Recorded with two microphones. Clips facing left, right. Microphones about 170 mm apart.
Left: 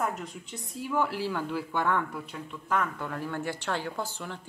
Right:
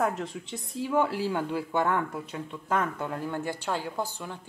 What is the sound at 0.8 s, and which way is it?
Speech, 20° right (ahead or behind).